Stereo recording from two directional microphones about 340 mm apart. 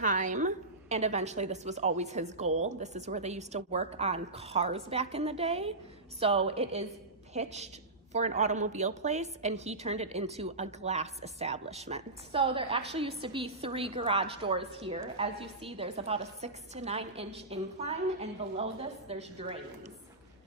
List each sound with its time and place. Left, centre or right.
0.0 s a woman's voice: right